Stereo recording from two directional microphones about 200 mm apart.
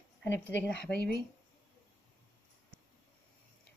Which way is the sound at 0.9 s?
55° left (ahead or behind).